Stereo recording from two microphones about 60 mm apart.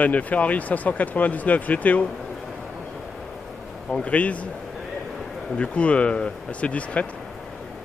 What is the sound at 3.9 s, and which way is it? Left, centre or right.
Speech, left.